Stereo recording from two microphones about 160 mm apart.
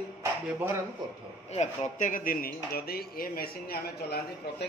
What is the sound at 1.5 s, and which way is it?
Speech, 50° left (ahead or behind).